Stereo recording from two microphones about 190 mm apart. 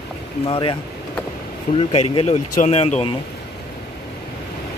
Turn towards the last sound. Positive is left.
turn(degrees=35)  # may be behind; listen again after turning